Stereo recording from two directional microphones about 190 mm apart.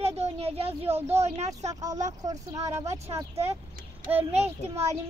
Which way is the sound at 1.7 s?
20° right (ahead or behind).